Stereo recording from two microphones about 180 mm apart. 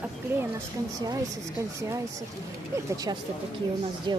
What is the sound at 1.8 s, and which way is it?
Speech, 15° right (ahead or behind).